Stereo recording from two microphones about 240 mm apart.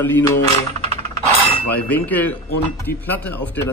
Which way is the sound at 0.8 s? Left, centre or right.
Right.